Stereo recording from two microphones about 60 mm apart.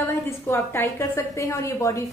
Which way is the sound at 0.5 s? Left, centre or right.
Left.